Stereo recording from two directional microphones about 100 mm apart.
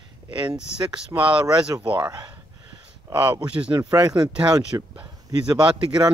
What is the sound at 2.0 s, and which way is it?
Speech, 45° right (ahead or behind).